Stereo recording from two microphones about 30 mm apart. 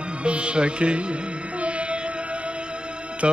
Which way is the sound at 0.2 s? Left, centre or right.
Right.